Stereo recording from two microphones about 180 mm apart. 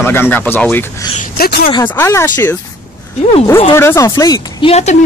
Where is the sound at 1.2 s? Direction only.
55° left (ahead or behind).